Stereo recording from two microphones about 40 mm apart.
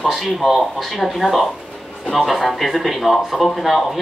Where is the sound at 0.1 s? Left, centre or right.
Centre.